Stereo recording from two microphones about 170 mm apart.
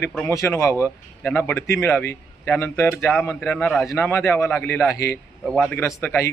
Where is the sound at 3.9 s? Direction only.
15° left (ahead or behind).